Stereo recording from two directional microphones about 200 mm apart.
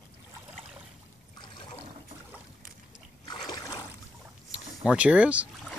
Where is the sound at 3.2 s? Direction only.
20° left (ahead or behind).